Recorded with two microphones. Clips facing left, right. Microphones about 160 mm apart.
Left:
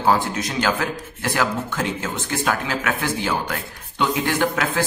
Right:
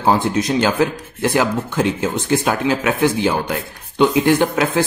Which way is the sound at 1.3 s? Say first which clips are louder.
Right 4 dB; 20° right (ahead or behind).